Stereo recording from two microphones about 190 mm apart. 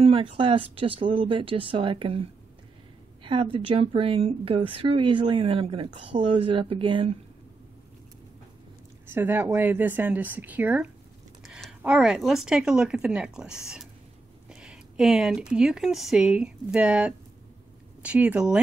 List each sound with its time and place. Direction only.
0.0 s speech: 30° right (ahead or behind)
3.5 s speech: 30° right (ahead or behind)
9.0 s a woman's voice: 10° right (ahead or behind)